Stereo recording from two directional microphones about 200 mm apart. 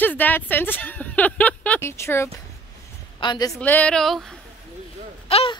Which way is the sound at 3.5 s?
5° left (ahead or behind).